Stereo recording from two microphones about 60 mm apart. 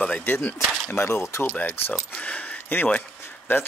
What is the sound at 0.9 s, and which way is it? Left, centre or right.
Speech, left.